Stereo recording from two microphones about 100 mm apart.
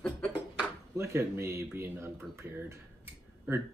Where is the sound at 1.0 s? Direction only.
25° right (ahead or behind).